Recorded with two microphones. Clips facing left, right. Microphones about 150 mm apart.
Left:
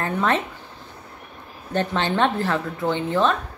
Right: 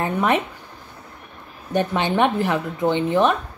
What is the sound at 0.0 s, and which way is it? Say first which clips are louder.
Speech: right 2 dB; 15° right (ahead or behind).